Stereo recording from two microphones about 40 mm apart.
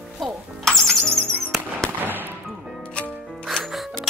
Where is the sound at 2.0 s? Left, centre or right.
Right.